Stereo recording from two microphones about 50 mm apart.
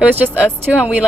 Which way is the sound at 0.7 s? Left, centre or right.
Right.